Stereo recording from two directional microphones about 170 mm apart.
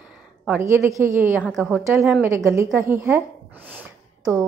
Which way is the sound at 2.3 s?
15° right (ahead or behind).